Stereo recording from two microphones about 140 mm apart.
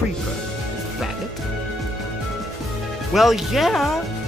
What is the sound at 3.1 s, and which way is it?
Speech, centre (ahead or behind).